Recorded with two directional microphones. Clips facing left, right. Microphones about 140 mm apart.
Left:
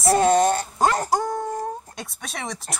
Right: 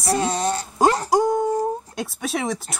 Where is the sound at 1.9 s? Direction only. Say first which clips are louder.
Right 9 dB; centre (ahead or behind).